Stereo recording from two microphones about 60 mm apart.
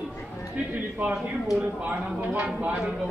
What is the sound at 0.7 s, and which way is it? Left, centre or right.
Speech, right.